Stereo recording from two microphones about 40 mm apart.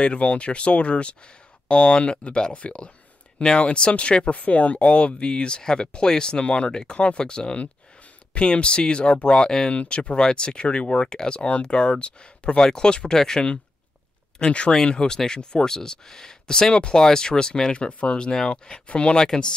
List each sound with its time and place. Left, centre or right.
0.0 s speech: left
9.8 s speech: left
14.4 s speech: left
14.9 s speech: centre
19.1 s speech: centre